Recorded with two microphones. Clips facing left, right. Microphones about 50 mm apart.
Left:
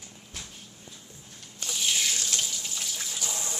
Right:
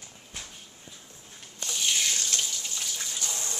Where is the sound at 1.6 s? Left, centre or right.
Centre.